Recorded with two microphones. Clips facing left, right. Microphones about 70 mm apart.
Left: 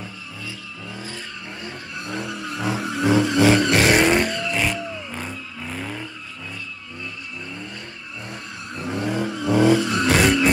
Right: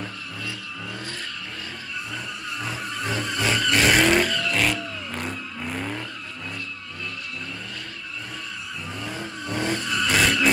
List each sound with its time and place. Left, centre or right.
0.0 s vehicle: centre
2.0 s vehicle: left
3.7 s vehicle: centre
8.7 s vehicle: left
10.2 s vehicle: centre